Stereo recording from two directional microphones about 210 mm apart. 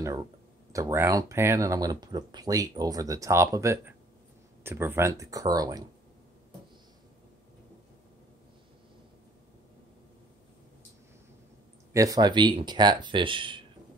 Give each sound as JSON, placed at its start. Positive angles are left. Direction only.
{"t": 0.7, "sound": "speech", "side_deg": -15}
{"t": 11.9, "sound": "speech", "side_deg": -15}